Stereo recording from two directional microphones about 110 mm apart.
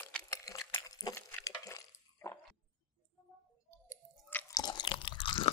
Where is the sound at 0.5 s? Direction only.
30° left (ahead or behind).